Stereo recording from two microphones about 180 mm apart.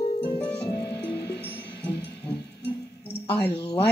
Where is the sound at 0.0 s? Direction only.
30° left (ahead or behind).